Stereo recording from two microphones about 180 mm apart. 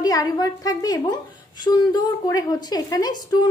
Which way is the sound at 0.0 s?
20° left (ahead or behind).